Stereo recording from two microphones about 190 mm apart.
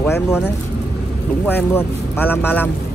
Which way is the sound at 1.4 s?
10° left (ahead or behind).